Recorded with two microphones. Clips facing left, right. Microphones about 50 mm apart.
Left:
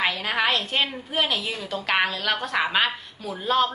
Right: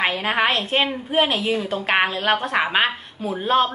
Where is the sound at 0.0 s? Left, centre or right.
Right.